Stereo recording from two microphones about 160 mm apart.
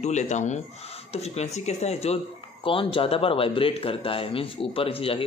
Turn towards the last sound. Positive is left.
turn(degrees=35)  # may be behind; listen again after turning